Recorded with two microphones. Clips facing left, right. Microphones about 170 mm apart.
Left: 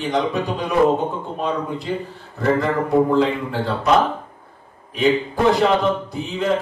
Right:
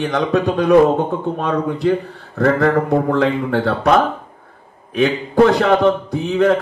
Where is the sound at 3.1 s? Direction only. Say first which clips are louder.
Right 2 dB; 65° right (ahead or behind).